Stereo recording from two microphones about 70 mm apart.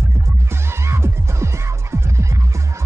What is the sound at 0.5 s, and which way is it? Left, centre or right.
Music, right.